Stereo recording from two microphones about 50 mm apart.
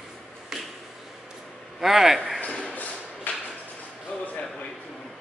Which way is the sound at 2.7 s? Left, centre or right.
Left.